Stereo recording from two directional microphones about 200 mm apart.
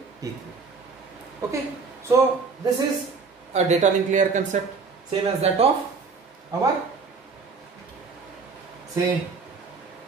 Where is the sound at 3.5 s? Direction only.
35° right (ahead or behind).